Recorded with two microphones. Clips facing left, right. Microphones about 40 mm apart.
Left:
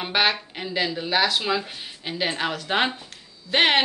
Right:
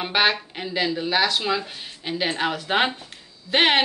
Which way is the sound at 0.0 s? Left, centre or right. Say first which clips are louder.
Right 1 dB; centre.